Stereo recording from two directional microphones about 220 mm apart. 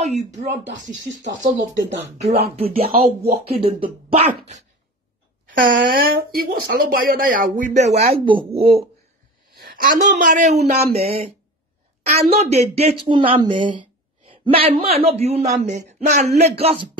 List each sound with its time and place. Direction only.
0.0 s speech: 30° right (ahead or behind)
1.8 s speech: 55° right (ahead or behind)
3.2 s speech: 25° right (ahead or behind)
5.5 s speech: 40° right (ahead or behind)
9.6 s speech: 40° right (ahead or behind)